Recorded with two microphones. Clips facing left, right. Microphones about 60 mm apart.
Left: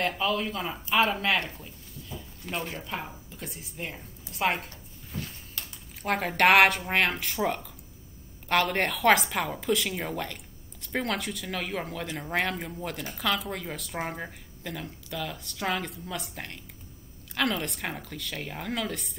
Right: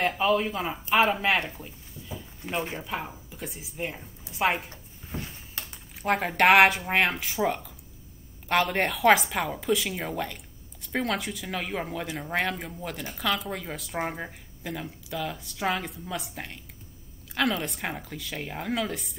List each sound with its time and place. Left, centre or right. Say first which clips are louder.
0.0 s a woman's voice: right 4 dB; centre
2.8 s a woman's voice: right 2 dB; centre
4.6 s a sound: right 2 dB; right
5.6 s a woman's voice: right 2 dB; centre